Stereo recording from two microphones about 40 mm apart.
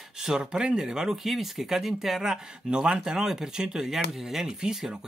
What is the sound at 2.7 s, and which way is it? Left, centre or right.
Speech, right.